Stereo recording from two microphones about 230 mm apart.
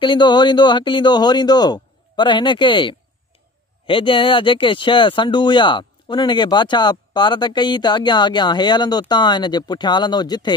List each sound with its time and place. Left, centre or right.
0.0 s speech: centre